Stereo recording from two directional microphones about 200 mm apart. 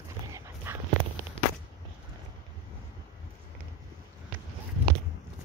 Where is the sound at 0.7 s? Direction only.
10° right (ahead or behind).